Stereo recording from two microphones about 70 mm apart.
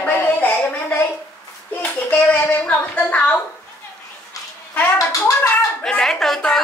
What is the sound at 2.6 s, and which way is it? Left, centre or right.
Speech, centre.